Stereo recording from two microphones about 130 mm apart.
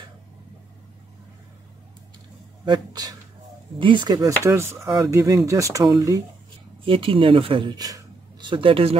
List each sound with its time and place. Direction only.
2.6 s speech: 35° right (ahead or behind)
4.4 s speech: 20° right (ahead or behind)
6.8 s speech: 45° right (ahead or behind)